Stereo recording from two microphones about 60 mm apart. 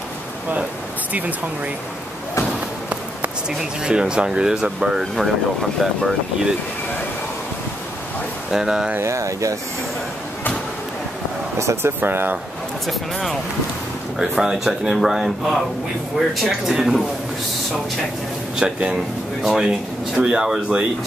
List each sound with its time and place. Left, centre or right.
3.4 s speech: centre
5.1 s speech: centre
8.5 s speech: centre
9.0 s speech: right
11.5 s speech: right
12.8 s speech: centre
14.3 s speech: centre
18.6 s speech: centre
20.2 s speech: centre
20.4 s speech: centre